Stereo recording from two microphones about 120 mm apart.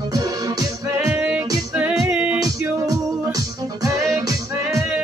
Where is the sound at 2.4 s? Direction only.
30° right (ahead or behind).